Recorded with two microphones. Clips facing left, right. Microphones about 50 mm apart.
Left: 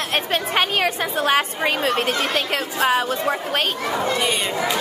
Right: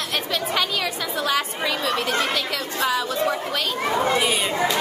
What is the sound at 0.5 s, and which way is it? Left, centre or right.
A woman's voice, left.